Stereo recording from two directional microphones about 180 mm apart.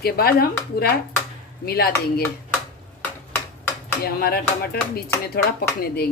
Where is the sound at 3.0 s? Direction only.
10° left (ahead or behind).